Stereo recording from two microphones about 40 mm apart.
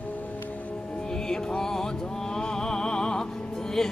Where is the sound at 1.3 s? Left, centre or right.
Centre.